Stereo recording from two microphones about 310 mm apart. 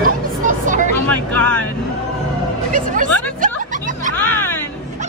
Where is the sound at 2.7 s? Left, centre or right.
Right.